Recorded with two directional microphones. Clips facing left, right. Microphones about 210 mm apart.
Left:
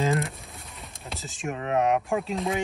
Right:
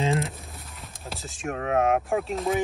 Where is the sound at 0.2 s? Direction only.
Centre (ahead or behind).